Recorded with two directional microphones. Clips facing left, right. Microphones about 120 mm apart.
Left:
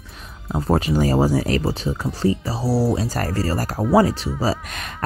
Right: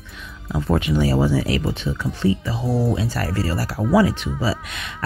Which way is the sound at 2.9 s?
40° left (ahead or behind).